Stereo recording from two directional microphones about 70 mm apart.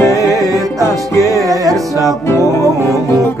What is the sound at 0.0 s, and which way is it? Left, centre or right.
Music, left.